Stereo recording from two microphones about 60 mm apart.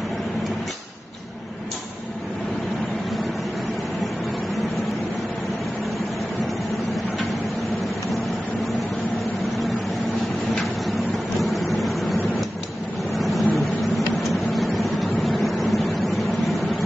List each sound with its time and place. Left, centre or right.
11.4 s vehicle: centre
13.2 s vehicle: centre